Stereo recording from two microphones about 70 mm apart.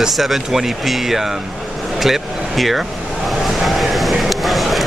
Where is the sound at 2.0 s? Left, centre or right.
Centre.